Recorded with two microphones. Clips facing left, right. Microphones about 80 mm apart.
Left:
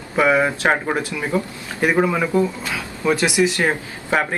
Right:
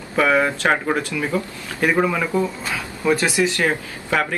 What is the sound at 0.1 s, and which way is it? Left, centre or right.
Speech, centre.